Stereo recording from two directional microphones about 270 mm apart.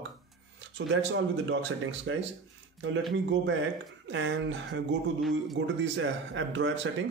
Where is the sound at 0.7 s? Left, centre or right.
Right.